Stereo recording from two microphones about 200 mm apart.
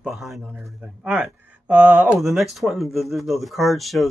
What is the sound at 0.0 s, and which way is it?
Speech, centre (ahead or behind).